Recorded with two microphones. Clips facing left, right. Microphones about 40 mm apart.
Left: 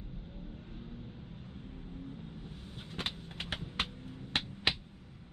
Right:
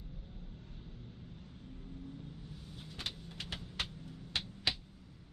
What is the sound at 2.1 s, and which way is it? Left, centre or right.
Vehicle, left.